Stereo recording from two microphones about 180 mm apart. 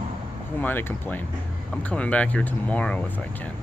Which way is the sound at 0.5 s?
10° left (ahead or behind).